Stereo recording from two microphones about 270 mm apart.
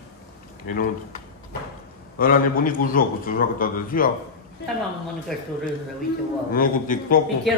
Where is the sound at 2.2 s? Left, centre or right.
Left.